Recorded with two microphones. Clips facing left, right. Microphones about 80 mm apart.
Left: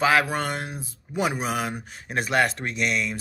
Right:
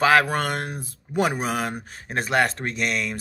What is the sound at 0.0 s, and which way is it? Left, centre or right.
Speech, right.